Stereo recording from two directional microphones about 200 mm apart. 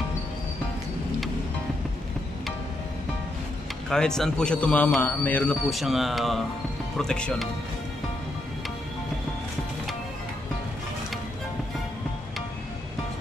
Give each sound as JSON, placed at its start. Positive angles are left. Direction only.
{"t": 3.9, "sound": "a man's voice", "side_deg": 5}